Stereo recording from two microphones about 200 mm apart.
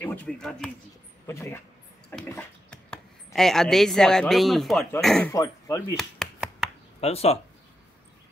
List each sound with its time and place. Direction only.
0.0 s speech: 10° left (ahead or behind)
1.2 s speech: 15° left (ahead or behind)
2.0 s a sound: 10° left (ahead or behind)
3.3 s speech: centre (ahead or behind)
5.3 s speech: 20° left (ahead or behind)
5.9 s a sound: centre (ahead or behind)
7.0 s speech: 30° left (ahead or behind)